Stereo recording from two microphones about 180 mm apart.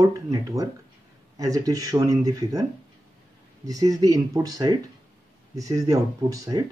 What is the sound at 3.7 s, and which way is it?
Speech, 20° right (ahead or behind).